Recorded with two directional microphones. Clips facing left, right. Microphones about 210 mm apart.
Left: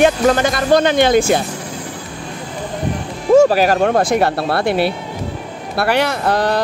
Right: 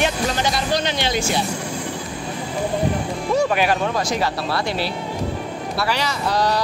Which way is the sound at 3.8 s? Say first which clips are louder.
Left 8 dB; 55° left (ahead or behind).